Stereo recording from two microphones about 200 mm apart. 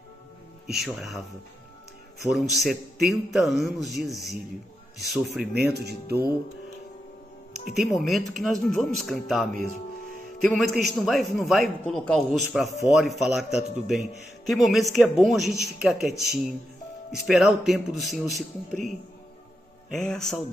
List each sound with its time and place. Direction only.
0.7 s a man's voice: centre (ahead or behind)
2.2 s a man's voice: centre (ahead or behind)
5.9 s speech: 50° right (ahead or behind)
8.3 s a man's voice: centre (ahead or behind)
20.0 s a man's voice: centre (ahead or behind)